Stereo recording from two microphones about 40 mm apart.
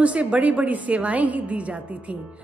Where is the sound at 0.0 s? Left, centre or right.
Right.